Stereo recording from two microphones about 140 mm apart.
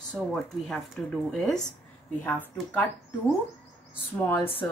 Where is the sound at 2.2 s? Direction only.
10° left (ahead or behind).